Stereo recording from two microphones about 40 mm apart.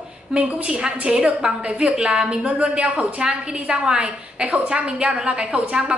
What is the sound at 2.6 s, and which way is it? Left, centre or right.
A woman's voice, right.